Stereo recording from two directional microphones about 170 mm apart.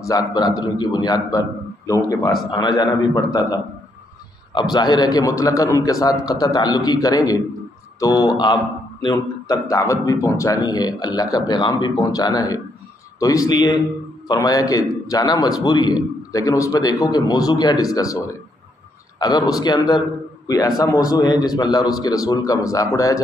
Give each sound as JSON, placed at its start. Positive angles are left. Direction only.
{"t": 0.0, "sound": "a man's voice", "side_deg": 20}